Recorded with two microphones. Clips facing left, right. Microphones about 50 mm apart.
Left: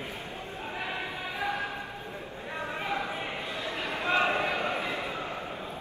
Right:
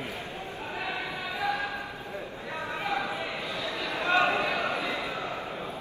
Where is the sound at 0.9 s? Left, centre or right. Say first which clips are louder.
Right 1 dB; left.